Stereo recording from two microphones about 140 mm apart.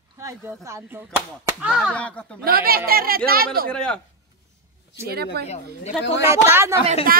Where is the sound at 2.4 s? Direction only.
90° right.